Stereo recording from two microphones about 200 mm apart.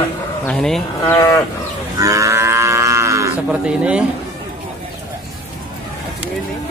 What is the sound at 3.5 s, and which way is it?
Speech, 5° right (ahead or behind).